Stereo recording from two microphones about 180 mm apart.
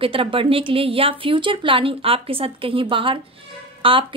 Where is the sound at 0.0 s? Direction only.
30° right (ahead or behind).